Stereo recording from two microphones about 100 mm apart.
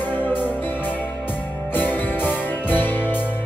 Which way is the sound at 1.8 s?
20° left (ahead or behind).